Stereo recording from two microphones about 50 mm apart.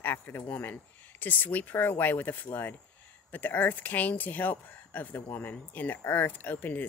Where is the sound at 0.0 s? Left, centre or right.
Left.